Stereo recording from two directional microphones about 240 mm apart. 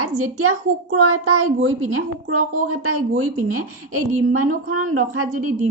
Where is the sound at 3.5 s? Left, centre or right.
Right.